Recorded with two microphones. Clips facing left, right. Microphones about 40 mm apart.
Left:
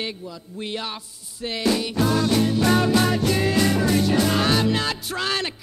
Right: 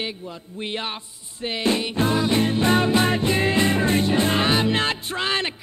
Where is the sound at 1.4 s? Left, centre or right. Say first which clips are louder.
Even; right.